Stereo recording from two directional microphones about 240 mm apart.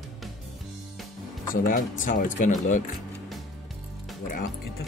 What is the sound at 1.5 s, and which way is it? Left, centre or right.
Speech, left.